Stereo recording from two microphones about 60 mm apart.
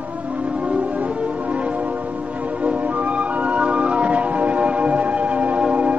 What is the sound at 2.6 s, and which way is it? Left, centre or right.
Music, right.